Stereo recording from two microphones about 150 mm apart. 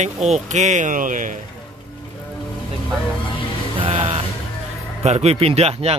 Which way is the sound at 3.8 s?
40° right (ahead or behind).